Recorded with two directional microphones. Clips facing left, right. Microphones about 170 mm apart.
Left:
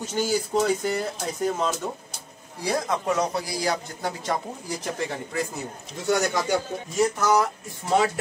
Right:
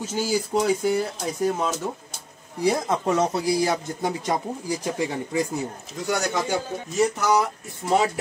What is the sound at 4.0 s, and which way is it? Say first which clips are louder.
Speech: right 3 dB; 15° right (ahead or behind).